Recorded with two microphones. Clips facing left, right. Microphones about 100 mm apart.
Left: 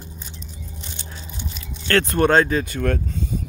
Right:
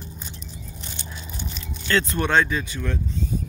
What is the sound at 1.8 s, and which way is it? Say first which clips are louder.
Speech: left 5 dB; 60° left (ahead or behind).